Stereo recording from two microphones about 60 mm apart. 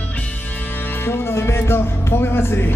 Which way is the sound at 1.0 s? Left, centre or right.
Left.